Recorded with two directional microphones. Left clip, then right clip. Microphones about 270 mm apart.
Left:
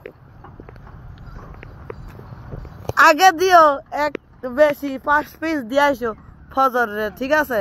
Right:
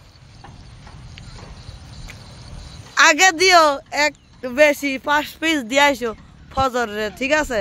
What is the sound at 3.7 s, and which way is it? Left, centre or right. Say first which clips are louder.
Speech: right 2 dB; centre.